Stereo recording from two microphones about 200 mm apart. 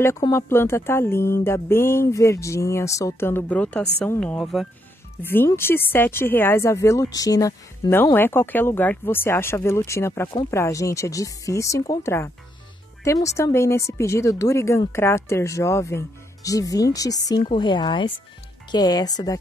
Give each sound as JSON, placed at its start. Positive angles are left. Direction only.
{"t": 0.0, "sound": "speech", "side_deg": 15}
{"t": 5.3, "sound": "speech", "side_deg": 10}